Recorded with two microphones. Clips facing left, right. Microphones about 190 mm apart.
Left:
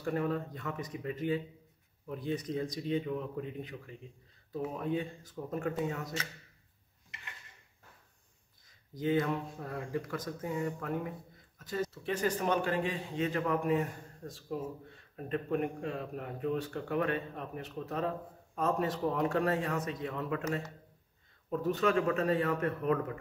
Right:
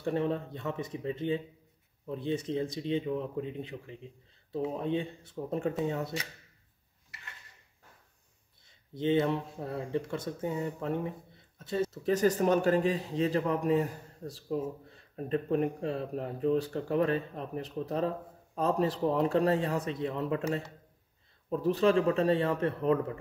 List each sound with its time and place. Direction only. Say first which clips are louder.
0.0 s a man's voice: right 2 dB; 25° right (ahead or behind)
8.6 s speech: right 3 dB; 25° right (ahead or behind)
11.9 s a man's voice: right 8 dB; 40° right (ahead or behind)